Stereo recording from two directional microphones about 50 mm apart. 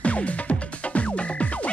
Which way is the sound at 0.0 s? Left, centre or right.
Left.